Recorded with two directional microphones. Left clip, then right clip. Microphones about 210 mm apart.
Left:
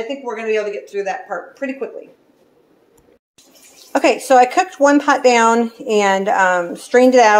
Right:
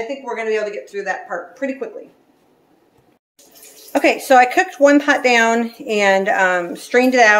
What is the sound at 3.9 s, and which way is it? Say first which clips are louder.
A woman's voice: even; 15° left (ahead or behind).